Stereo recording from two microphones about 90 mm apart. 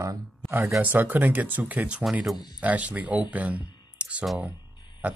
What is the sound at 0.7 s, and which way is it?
Speech, 20° right (ahead or behind).